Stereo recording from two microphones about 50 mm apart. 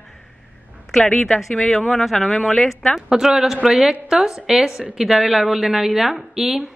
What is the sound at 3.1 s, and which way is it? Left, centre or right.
Speech, centre.